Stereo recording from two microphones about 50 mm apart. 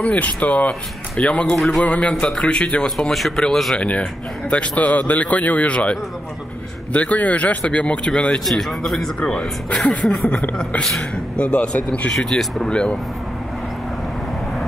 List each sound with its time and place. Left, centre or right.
0.0 s speech: left
1.6 s a man's voice: centre
1.9 s speech: left
2.1 s speech: centre
2.4 s speech: left
3.1 s a man's voice: centre
3.7 s speech: left
4.7 s speech: left
8.0 s speech: centre
9.2 s speech: centre
12.2 s speech: centre
12.6 s speech: centre